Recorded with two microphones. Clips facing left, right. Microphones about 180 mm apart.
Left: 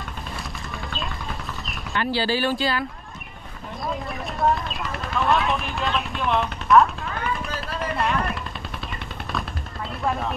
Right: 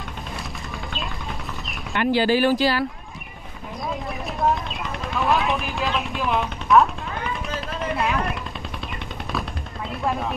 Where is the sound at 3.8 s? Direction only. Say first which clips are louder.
Even; centre (ahead or behind).